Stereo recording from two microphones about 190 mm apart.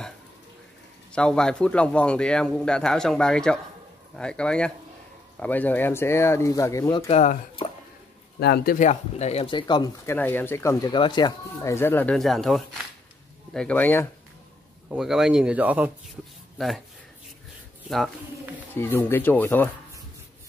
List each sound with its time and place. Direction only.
1.1 s a man's voice: 5° left (ahead or behind)
7.1 s speech: 35° left (ahead or behind)
8.4 s speech: 55° left (ahead or behind)
8.7 s speech: 35° left (ahead or behind); by 10.1 s 20° left (ahead or behind)
10.1 s speech: 10° left (ahead or behind)
14.9 s a man's voice: centre (ahead or behind)
17.8 s speech: centre (ahead or behind)
18.8 s speech: 10° left (ahead or behind)